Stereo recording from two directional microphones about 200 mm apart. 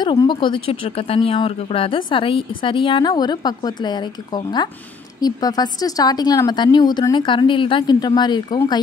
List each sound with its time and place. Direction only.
0.0 s speech: 20° left (ahead or behind)